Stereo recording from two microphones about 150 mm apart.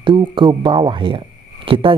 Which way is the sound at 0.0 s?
30° right (ahead or behind).